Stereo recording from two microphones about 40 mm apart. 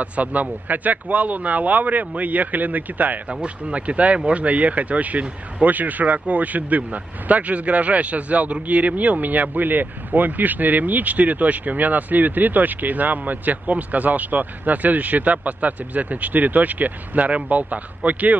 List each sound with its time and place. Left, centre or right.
0.0 s speech: right
3.3 s speech: right